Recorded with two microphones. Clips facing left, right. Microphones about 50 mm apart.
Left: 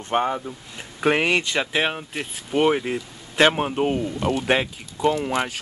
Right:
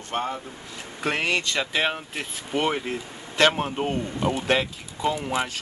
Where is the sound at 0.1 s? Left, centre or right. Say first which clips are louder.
Left 6 dB; left.